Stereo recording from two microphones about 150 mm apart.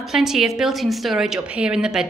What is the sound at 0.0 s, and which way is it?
A woman's voice, 5° right (ahead or behind).